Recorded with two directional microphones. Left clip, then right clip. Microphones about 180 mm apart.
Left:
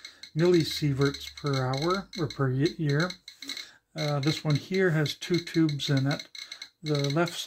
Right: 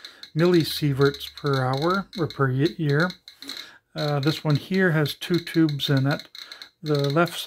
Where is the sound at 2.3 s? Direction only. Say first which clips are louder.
Right 5 dB; 25° right (ahead or behind).